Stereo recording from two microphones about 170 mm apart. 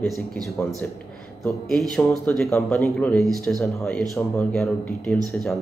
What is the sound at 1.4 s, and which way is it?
A man's voice, 5° left (ahead or behind).